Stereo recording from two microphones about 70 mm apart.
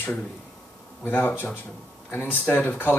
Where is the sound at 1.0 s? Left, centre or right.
Left.